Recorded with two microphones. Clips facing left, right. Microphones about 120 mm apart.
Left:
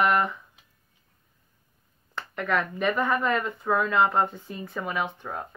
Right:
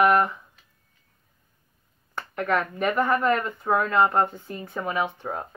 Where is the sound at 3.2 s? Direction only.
5° right (ahead or behind).